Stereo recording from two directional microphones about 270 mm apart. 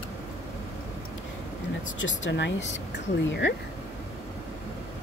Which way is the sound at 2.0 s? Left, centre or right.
Left.